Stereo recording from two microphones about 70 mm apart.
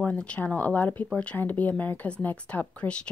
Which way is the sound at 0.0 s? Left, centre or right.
Centre.